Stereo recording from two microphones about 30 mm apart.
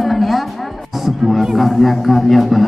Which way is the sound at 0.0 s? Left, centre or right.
Centre.